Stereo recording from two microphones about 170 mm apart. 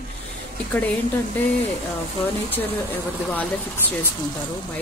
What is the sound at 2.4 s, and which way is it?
A woman's voice, 10° left (ahead or behind).